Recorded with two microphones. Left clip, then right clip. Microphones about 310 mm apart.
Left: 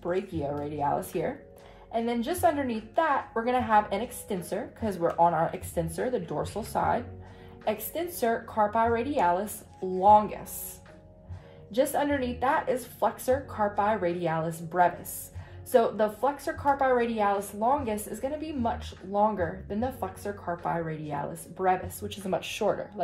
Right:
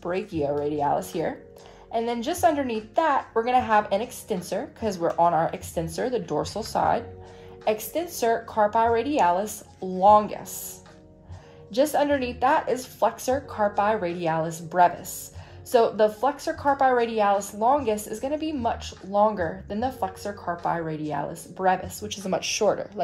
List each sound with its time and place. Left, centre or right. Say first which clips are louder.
0.0 s speech: right 3 dB; right
11.7 s speech: right 4 dB; right